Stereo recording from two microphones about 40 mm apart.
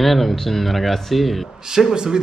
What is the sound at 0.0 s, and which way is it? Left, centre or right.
Speech, centre.